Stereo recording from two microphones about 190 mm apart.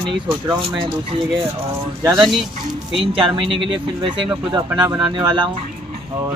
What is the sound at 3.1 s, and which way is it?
Speech, 30° right (ahead or behind).